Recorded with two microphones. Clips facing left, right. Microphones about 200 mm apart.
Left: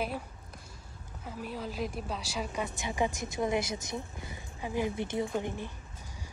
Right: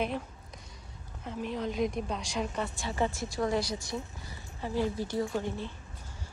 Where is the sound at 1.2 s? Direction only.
5° left (ahead or behind).